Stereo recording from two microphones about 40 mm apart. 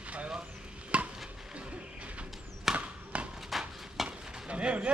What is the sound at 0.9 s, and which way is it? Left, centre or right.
Stir, right.